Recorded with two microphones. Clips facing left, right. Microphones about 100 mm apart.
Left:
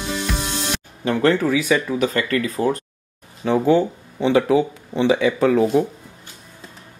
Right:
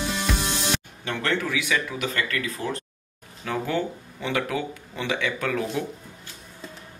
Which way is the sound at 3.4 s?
25° left (ahead or behind).